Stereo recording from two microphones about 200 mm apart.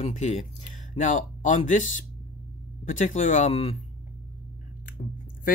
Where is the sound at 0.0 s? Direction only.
35° left (ahead or behind).